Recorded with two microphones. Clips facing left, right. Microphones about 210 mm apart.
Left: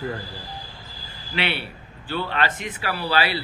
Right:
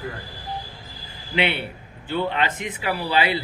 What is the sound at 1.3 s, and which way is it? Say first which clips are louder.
A man's voice: right 3 dB; 20° right (ahead or behind).